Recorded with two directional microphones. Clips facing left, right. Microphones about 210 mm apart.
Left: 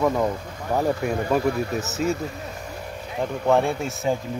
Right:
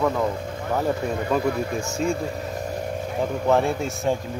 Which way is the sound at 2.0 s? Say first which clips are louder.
Even; 5° left (ahead or behind).